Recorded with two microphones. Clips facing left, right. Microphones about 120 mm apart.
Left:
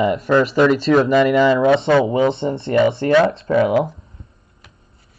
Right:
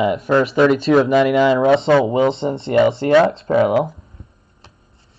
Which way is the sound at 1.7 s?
30° right (ahead or behind).